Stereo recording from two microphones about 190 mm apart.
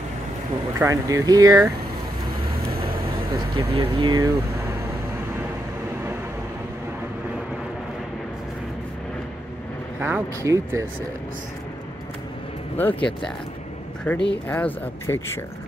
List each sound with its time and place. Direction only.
0.7 s speech: 15° right (ahead or behind)
2.7 s vehicle: 50° right (ahead or behind)
3.5 s speech: 25° right (ahead or behind)
9.9 s speech: 10° right (ahead or behind)
12.7 s speech: 10° left (ahead or behind)